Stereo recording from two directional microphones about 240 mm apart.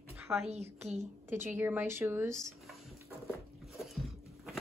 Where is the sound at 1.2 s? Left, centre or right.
Centre.